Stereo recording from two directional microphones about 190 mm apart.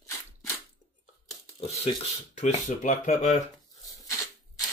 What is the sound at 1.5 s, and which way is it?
Speech, 35° left (ahead or behind).